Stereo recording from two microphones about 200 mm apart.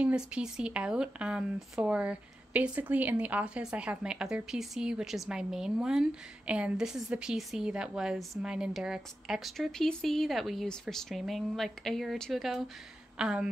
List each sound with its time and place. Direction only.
0.0 s speech: 5° right (ahead or behind)